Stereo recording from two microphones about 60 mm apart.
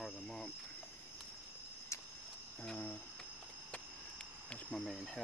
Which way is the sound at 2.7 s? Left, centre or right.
Left.